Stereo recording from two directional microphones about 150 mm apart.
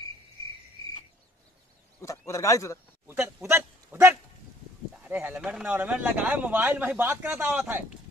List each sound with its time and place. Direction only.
2.0 s speech: 20° left (ahead or behind)
3.4 s a sound: 15° right (ahead or behind)
4.9 s speech: 10° right (ahead or behind)